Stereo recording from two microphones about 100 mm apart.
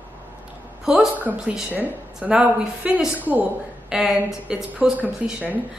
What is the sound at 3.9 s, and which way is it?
A woman's voice, 5° right (ahead or behind).